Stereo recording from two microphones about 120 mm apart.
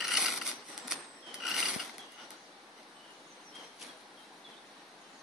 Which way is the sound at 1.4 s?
5° right (ahead or behind).